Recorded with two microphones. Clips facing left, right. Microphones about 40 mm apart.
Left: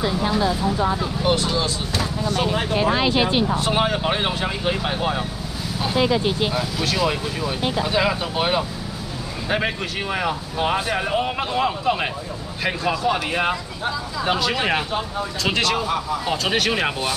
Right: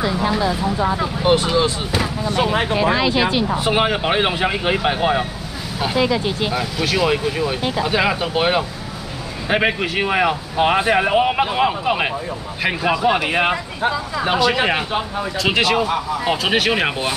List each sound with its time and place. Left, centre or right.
1.0 s speech: right
2.8 s speech: centre
3.5 s speech: centre
5.9 s speech: centre